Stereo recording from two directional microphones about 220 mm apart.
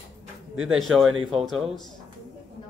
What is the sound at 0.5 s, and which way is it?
A man's voice, centre (ahead or behind).